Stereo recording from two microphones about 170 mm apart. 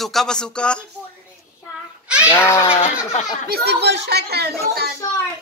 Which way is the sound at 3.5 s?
75° right (ahead or behind).